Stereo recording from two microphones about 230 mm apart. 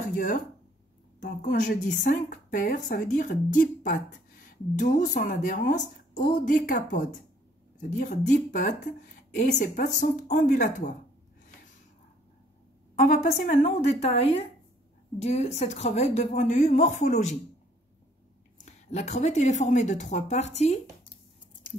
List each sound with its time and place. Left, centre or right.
0.0 s a sound: left
1.2 s a woman's voice: left
12.9 s a woman's voice: left
18.7 s a woman's voice: left